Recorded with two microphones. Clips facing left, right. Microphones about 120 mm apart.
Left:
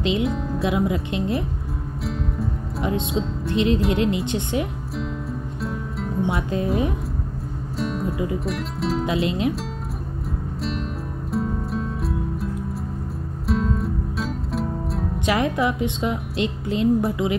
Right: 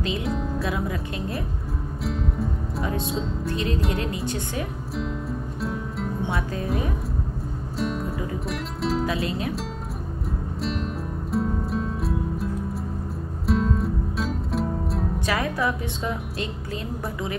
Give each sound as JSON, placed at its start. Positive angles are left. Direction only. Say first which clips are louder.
{"t": 0.2, "sound": "music", "louder": "left 4 dB", "side_deg": 0}
{"t": 0.6, "sound": "speech", "louder": "left 5 dB", "side_deg": 20}
{"t": 2.8, "sound": "speech", "louder": "left 4 dB", "side_deg": 20}
{"t": 5.6, "sound": "music", "louder": "even", "side_deg": 0}
{"t": 6.2, "sound": "speech", "louder": "left 7 dB", "side_deg": 25}
{"t": 7.8, "sound": "music", "louder": "left 1 dB", "side_deg": 0}
{"t": 8.5, "sound": "speech", "louder": "left 2 dB", "side_deg": 0}
{"t": 9.0, "sound": "speech", "louder": "left 3 dB", "side_deg": 25}
{"t": 10.6, "sound": "music", "louder": "right 1 dB", "side_deg": 0}
{"t": 15.1, "sound": "speech", "louder": "left 6 dB", "side_deg": 20}